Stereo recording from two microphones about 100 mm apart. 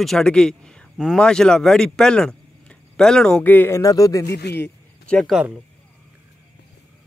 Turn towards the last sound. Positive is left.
turn(degrees=-10)  # may be behind; listen again after turning